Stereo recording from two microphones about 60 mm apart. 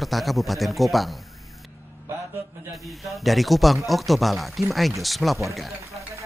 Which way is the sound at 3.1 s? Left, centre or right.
Centre.